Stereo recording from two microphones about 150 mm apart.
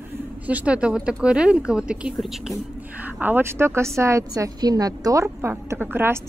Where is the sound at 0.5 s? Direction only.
10° right (ahead or behind).